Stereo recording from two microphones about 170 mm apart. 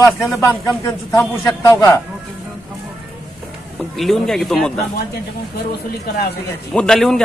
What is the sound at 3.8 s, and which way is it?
Speech, centre (ahead or behind).